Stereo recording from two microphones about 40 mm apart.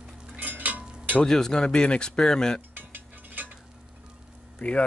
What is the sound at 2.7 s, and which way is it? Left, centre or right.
Mechanisms, right.